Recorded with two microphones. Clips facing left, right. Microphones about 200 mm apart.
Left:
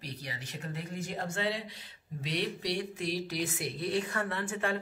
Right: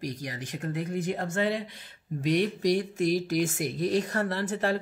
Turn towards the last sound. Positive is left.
turn(degrees=-35)  # may be behind; listen again after turning